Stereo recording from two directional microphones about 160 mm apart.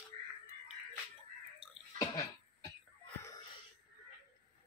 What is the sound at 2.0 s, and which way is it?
Cough, 20° left (ahead or behind).